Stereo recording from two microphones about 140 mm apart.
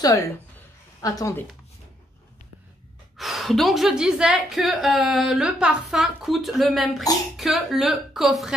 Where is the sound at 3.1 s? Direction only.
Centre (ahead or behind).